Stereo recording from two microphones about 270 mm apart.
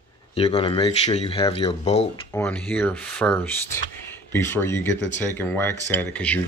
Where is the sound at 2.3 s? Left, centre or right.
Centre.